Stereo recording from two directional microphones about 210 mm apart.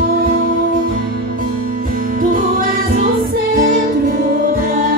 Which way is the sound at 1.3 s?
40° right (ahead or behind).